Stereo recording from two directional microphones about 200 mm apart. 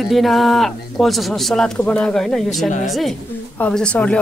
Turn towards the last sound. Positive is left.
turn(degrees=5)  # may be behind; listen again after turning